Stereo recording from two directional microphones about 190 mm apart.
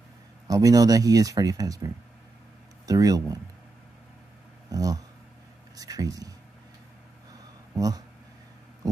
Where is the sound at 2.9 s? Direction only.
20° right (ahead or behind).